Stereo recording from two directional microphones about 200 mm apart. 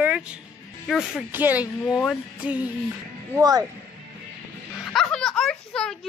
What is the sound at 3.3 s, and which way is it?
Speech, 20° right (ahead or behind).